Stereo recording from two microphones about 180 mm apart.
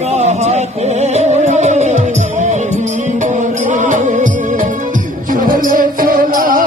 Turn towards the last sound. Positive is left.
turn(degrees=-50)  # may be behind; listen again after turning